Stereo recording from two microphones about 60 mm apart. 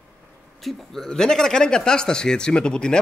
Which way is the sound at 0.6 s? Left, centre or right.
Centre.